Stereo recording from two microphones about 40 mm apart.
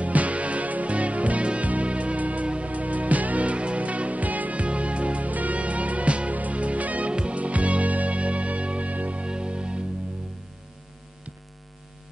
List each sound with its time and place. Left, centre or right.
0.0 s music: right